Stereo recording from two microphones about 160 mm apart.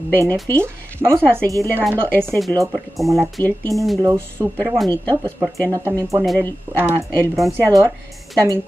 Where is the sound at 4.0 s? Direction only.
20° right (ahead or behind).